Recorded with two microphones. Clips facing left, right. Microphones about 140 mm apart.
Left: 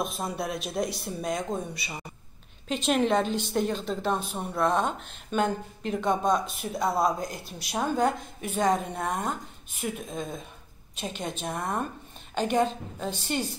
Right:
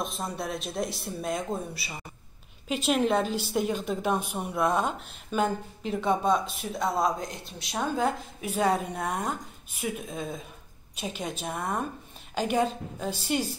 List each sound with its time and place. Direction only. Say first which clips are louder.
0.0 s a woman's voice: left 2 dB; centre (ahead or behind)